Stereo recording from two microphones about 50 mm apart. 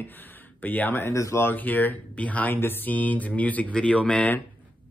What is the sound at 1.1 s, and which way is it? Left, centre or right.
Speech, left.